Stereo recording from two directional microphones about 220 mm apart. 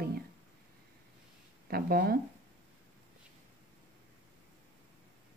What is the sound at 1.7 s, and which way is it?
Speech, 45° right (ahead or behind).